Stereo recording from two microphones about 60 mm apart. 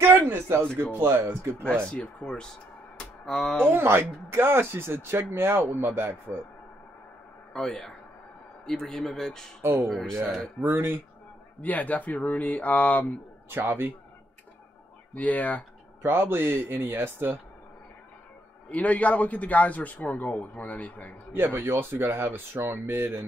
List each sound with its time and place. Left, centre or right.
0.0 s a sound: right
0.9 s speech: right
1.9 s speech: centre
3.6 s speech: right
7.5 s speech: centre
9.6 s speech: right
9.8 s speech: centre
10.6 s speech: right
11.6 s a man's voice: left
15.1 s a man's voice: left
16.0 s speech: right
18.7 s a man's voice: left
21.3 s speech: right